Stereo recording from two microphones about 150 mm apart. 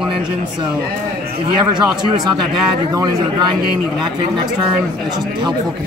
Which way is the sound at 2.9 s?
25° right (ahead or behind).